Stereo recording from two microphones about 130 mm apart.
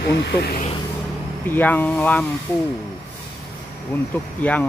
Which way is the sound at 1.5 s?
15° left (ahead or behind).